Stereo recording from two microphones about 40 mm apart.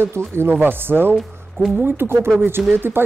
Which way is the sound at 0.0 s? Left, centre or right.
Right.